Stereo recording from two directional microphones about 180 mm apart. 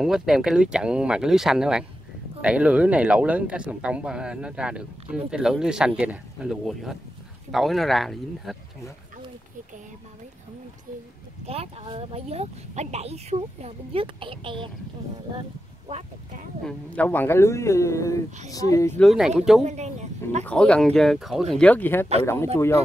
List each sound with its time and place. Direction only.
0.0 s speech: 5° right (ahead or behind)
11.4 s speech: 35° right (ahead or behind)
15.9 s speech: 40° right (ahead or behind)
16.6 s a woman's voice: 10° left (ahead or behind)
18.9 s speech: centre (ahead or behind)
19.6 s speech: 40° right (ahead or behind)
20.4 s speech: 5° left (ahead or behind)